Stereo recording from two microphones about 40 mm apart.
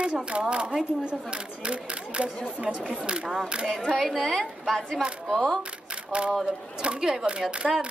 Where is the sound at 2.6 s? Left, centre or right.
Right.